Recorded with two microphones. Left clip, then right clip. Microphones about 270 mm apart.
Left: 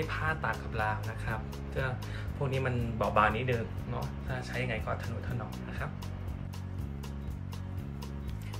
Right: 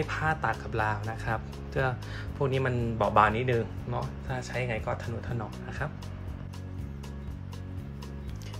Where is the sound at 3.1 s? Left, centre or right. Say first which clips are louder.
Right 4 dB; right.